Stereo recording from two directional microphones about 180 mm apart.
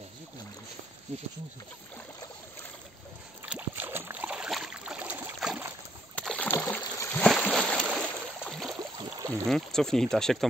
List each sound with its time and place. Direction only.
3.4 s boat: 10° right (ahead or behind)
6.1 s rowboat: 5° left (ahead or behind)
6.8 s boat: 15° left (ahead or behind)
8.7 s a sound: 20° right (ahead or behind)
9.5 s speech: 5° left (ahead or behind)